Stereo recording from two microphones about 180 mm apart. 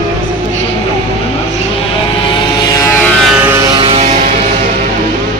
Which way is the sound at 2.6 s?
15° left (ahead or behind).